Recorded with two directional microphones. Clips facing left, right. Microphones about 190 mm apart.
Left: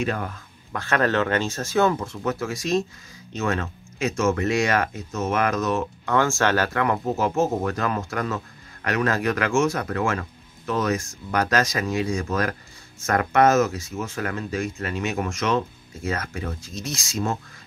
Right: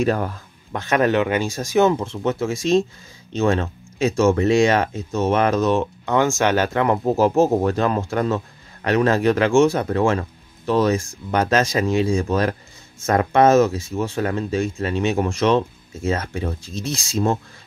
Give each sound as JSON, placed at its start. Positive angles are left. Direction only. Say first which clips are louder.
{"t": 0.0, "sound": "speech", "louder": "right 6 dB", "side_deg": -35}
{"t": 0.7, "sound": "speech", "louder": "right 4 dB", "side_deg": -20}
{"t": 6.1, "sound": "speech", "louder": "right 3 dB", "side_deg": -15}